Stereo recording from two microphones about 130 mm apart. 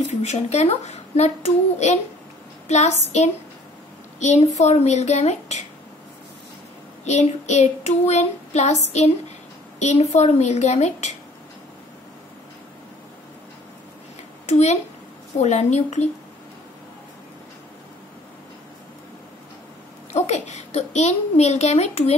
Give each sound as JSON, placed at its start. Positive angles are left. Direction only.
{"t": 0.0, "sound": "a woman's voice", "side_deg": 60}
{"t": 4.2, "sound": "a woman's voice", "side_deg": 60}
{"t": 7.1, "sound": "a woman's voice", "side_deg": 60}
{"t": 14.4, "sound": "a woman's voice", "side_deg": 60}
{"t": 20.1, "sound": "a woman's voice", "side_deg": 60}